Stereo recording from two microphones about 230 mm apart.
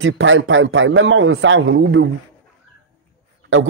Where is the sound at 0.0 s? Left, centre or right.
Right.